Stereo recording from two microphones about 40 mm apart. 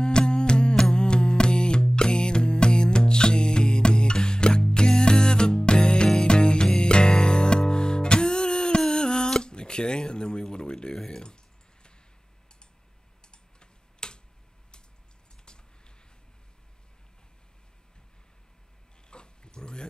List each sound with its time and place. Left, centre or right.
0.0 s music: left
9.3 s a sound: left
11.0 s clicking: centre
13.3 s typing: left
19.0 s pig: left